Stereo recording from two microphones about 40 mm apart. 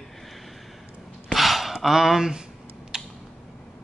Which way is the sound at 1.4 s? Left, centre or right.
Centre.